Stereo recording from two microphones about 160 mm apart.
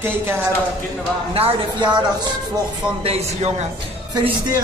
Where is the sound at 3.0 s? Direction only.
40° right (ahead or behind).